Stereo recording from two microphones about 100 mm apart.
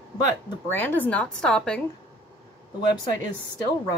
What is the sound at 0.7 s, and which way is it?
A woman's voice, 20° left (ahead or behind).